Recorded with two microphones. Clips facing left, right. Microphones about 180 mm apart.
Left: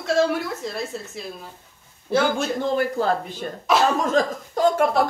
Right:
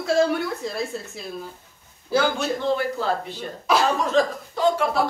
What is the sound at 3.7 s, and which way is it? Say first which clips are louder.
Speech: left 1 dB; centre (ahead or behind).